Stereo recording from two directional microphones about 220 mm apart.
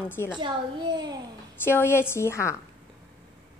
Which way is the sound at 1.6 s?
10° left (ahead or behind).